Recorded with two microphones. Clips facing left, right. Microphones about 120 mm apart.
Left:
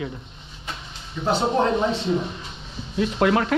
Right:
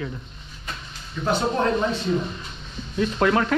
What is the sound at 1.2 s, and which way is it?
Speech, 25° left (ahead or behind).